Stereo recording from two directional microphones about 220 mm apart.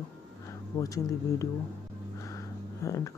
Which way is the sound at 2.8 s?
15° left (ahead or behind).